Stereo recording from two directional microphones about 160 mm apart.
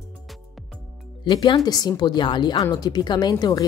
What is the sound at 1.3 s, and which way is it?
A woman's voice, 30° left (ahead or behind).